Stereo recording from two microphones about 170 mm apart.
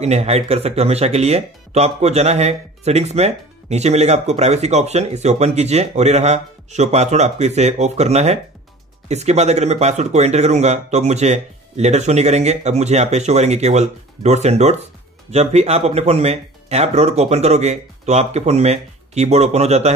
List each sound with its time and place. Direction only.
0.0 s speech: 40° right (ahead or behind)